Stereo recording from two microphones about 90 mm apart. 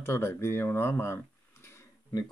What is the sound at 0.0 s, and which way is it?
Speech, 25° left (ahead or behind).